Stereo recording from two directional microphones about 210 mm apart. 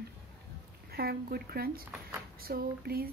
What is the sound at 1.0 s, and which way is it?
Speech, 45° right (ahead or behind).